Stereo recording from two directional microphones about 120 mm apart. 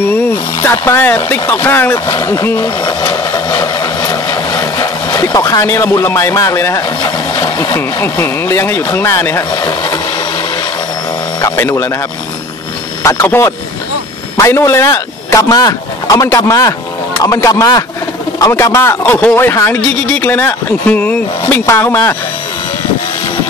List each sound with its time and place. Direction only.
0.6 s speech: 20° left (ahead or behind)
2.6 s speech: 40° left (ahead or behind); by 6.8 s 25° left (ahead or behind)
7.0 s speech: 40° left (ahead or behind)
7.7 s speech: 20° left (ahead or behind)
11.4 s speech: 20° left (ahead or behind)
13.0 s speech: 25° left (ahead or behind)
18.5 s speech: 20° left (ahead or behind)